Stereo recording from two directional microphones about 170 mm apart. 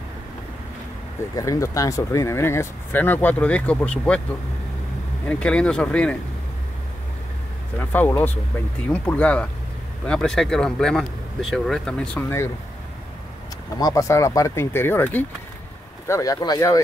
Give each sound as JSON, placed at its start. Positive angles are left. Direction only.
{"t": 1.3, "sound": "speech", "side_deg": 20}
{"t": 5.3, "sound": "speech", "side_deg": 5}
{"t": 7.9, "sound": "speech", "side_deg": 10}
{"t": 13.7, "sound": "speech", "side_deg": 20}